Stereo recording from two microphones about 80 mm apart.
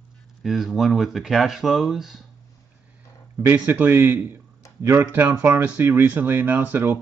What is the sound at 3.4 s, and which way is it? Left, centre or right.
Speech, right.